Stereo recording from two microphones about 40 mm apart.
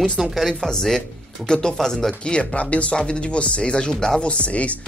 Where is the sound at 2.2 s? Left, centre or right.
Left.